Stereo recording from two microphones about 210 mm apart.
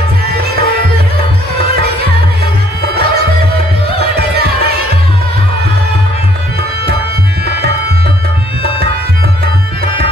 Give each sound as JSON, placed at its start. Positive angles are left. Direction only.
{"t": 0.3, "sound": "music", "side_deg": -50}
{"t": 2.8, "sound": "music", "side_deg": -50}
{"t": 4.2, "sound": "music", "side_deg": -50}